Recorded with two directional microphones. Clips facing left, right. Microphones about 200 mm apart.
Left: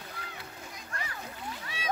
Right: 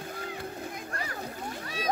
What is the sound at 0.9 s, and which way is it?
Splash, 40° right (ahead or behind).